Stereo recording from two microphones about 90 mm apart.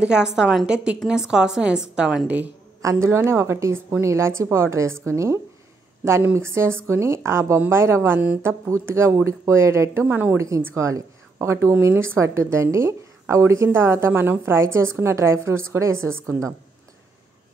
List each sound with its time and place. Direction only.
0.0 s a woman's voice: 10° right (ahead or behind)
2.8 s a woman's voice: 35° right (ahead or behind)
10.0 s a woman's voice: 20° right (ahead or behind)
10.3 s a woman's voice: 35° right (ahead or behind)